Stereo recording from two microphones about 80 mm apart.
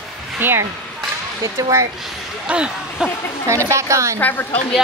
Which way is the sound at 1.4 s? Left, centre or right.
Right.